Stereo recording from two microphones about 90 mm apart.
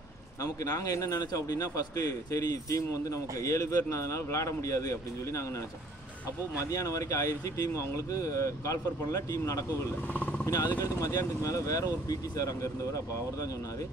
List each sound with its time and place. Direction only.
0.4 s a man's voice: 40° left (ahead or behind)
6.7 s a man's voice: 35° left (ahead or behind)
10.0 s vehicle: 20° left (ahead or behind)
10.4 s a man's voice: 40° left (ahead or behind)